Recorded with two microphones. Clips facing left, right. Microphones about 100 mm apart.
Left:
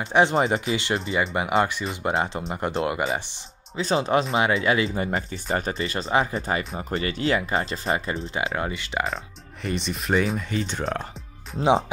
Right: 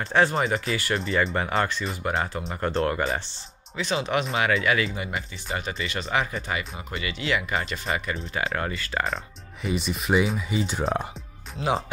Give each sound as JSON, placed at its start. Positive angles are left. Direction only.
{"t": 0.1, "sound": "speech", "side_deg": 20}
{"t": 1.1, "sound": "speech", "side_deg": 10}
{"t": 2.1, "sound": "speech", "side_deg": 25}
{"t": 2.5, "sound": "speech", "side_deg": 15}
{"t": 3.2, "sound": "speech", "side_deg": 15}
{"t": 3.7, "sound": "speech", "side_deg": 35}
{"t": 8.3, "sound": "speech", "side_deg": 20}
{"t": 9.0, "sound": "speech", "side_deg": 0}